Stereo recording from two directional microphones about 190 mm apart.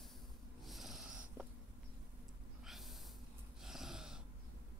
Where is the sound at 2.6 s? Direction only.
Centre (ahead or behind).